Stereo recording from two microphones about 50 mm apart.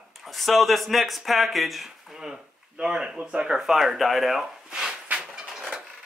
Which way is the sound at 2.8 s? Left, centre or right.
Centre.